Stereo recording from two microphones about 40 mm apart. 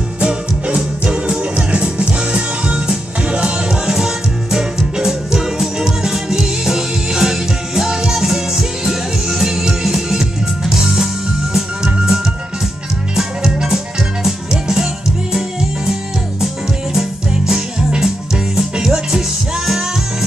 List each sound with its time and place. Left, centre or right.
0.2 s music: right
18.9 s music: centre